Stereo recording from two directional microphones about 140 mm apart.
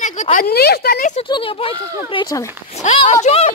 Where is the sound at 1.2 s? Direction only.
35° left (ahead or behind).